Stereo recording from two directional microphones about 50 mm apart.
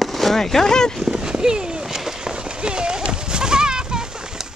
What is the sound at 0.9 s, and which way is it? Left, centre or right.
Run, centre.